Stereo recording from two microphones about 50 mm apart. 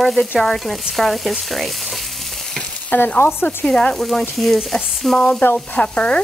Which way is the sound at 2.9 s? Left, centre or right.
Left.